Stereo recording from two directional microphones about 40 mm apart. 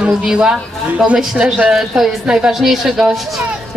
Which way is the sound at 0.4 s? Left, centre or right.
Right.